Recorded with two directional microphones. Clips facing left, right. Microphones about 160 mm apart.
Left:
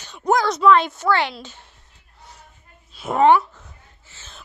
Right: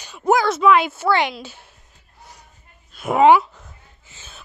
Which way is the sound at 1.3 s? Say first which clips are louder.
Right 3 dB; 10° right (ahead or behind).